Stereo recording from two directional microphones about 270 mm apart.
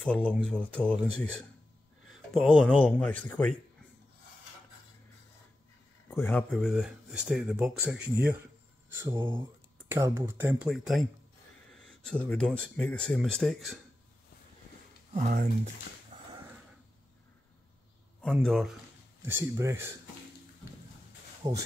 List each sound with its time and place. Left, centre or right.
0.0 s speech: centre
2.3 s speech: centre
6.0 s speech: centre
9.0 s speech: centre
15.1 s speech: right
16.1 s a sound: right
18.2 s speech: centre
21.4 s speech: centre